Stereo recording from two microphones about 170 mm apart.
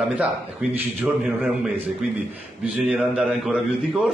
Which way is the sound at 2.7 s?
5° right (ahead or behind).